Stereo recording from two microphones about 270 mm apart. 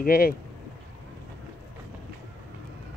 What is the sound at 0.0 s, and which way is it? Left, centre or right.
Speech, left.